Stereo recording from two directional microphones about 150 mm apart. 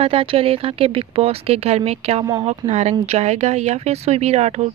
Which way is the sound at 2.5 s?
50° right (ahead or behind).